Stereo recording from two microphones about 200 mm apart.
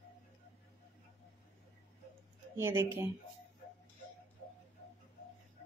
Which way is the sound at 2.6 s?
10° right (ahead or behind).